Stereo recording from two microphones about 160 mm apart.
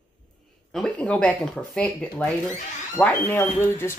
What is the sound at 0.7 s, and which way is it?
Speech, 5° left (ahead or behind).